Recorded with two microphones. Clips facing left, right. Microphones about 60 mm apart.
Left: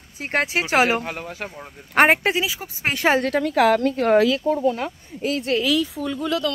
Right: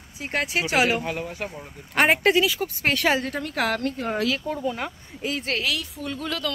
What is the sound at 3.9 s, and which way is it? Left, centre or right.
Speech, left.